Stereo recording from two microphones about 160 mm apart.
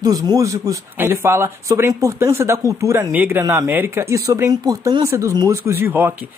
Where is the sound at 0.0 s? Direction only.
25° right (ahead or behind).